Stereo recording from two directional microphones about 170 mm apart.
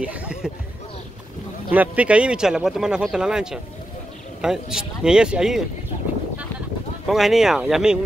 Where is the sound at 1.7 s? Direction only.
10° right (ahead or behind).